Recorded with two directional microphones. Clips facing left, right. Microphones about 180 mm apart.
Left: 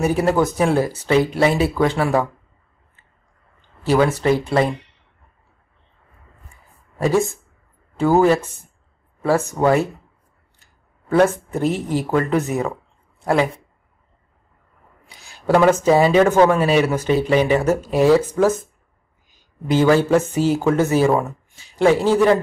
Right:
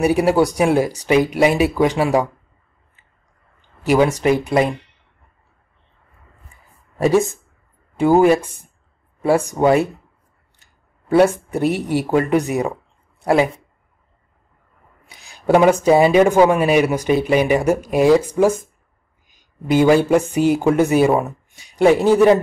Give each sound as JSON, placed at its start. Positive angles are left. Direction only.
{"t": 0.0, "sound": "speech", "side_deg": -10}
{"t": 3.8, "sound": "speech", "side_deg": -15}
{"t": 7.0, "sound": "speech", "side_deg": -20}
{"t": 11.1, "sound": "speech", "side_deg": -15}
{"t": 15.0, "sound": "speech", "side_deg": -15}